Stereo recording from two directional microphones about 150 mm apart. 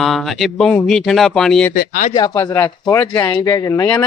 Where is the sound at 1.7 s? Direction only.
60° left (ahead or behind).